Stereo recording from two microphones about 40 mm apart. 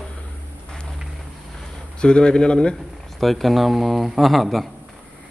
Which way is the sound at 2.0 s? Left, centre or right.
Left.